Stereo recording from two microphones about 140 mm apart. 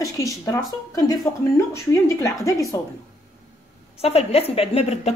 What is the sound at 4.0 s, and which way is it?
A woman's voice, 45° left (ahead or behind).